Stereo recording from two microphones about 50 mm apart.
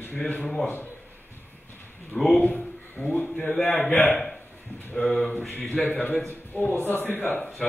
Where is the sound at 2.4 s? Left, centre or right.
Left.